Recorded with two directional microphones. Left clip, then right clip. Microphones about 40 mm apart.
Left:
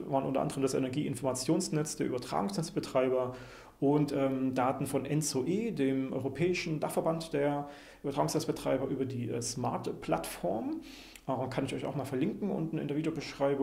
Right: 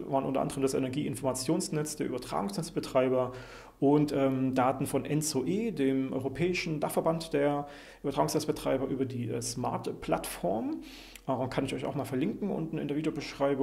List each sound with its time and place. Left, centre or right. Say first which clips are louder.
0.1 s speech: right 1 dB; right